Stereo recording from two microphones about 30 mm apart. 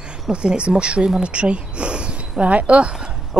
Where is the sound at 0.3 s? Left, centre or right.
Right.